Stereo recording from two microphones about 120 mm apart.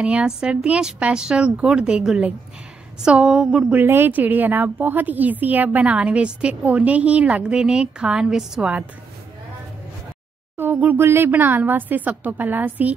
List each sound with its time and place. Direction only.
0.0 s speech: 10° right (ahead or behind)
3.8 s speech: 20° right (ahead or behind)
10.6 s speech: 15° right (ahead or behind)